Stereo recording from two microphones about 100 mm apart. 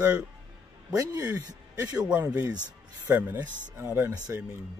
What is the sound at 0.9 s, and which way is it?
Speech, 35° right (ahead or behind).